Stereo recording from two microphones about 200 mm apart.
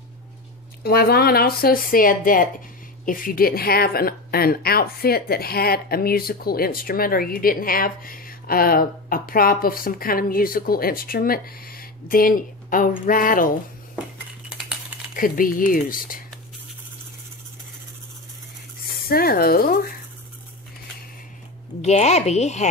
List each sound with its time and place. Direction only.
0.8 s a woman's voice: 50° left (ahead or behind)
15.1 s a woman's voice: 45° left (ahead or behind)
19.0 s a woman's voice: 50° left (ahead or behind)
21.8 s speech: 35° left (ahead or behind)